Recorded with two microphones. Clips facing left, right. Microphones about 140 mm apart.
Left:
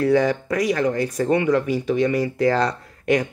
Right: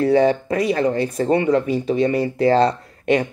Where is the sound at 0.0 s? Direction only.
30° right (ahead or behind).